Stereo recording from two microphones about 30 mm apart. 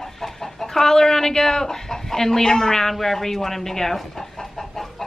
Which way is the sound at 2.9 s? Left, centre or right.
Centre.